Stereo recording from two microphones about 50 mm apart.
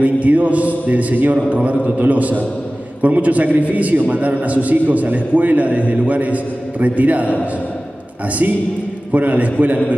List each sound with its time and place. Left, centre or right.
0.0 s a man's voice: right
9.1 s a man's voice: right